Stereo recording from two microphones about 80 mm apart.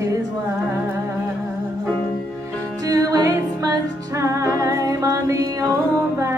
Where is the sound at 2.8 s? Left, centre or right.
Right.